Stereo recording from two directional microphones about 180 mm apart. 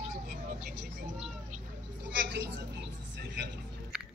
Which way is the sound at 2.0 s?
80° right.